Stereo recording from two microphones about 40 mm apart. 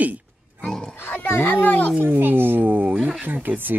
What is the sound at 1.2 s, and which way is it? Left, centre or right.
Speech, left.